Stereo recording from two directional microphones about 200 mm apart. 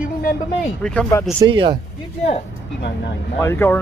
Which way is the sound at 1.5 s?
25° right (ahead or behind).